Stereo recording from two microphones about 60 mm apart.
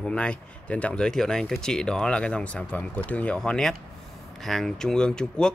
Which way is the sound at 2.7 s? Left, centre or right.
Left.